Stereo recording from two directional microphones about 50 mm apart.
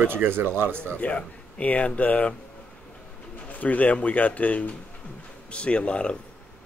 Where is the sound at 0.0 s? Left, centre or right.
Right.